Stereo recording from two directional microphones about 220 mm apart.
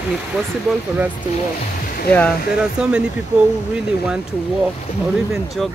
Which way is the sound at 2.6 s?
5° right (ahead or behind).